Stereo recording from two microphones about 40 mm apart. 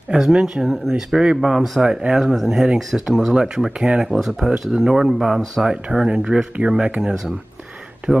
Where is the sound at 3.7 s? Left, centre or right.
Right.